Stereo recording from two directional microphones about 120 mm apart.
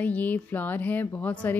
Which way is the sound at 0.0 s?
15° left (ahead or behind).